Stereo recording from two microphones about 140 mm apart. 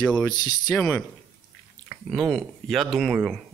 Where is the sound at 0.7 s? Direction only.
5° left (ahead or behind).